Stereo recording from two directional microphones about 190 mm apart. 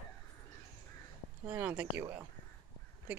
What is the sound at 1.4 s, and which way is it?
Speech, 10° right (ahead or behind).